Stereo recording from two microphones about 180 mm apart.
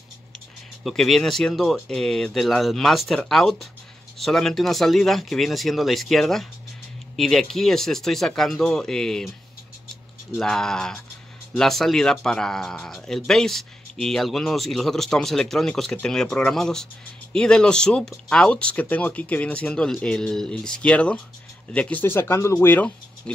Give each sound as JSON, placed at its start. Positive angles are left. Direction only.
{"t": 0.8, "sound": "speech", "side_deg": 0}
{"t": 10.3, "sound": "speech", "side_deg": 5}